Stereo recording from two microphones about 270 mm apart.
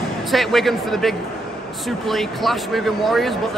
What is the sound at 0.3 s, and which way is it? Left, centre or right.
Speech, centre.